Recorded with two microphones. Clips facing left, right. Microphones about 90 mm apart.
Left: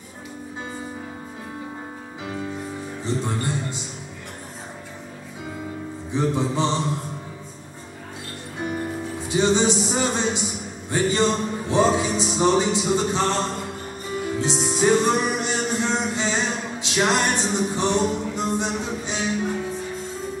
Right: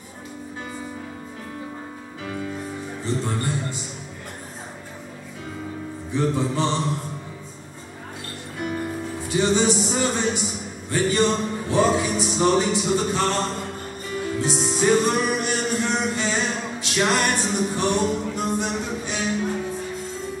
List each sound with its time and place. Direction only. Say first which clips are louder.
3.0 s music: even; 20° left (ahead or behind)
6.1 s music: even; 20° left (ahead or behind)
8.5 s music: even; 20° left (ahead or behind)
14.6 s music: left 1 dB; 5° left (ahead or behind)
15.0 s music: even; 20° left (ahead or behind)